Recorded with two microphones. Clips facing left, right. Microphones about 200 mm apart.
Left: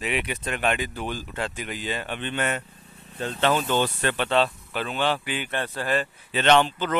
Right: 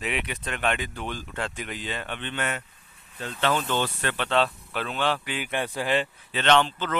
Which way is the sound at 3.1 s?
30° left (ahead or behind).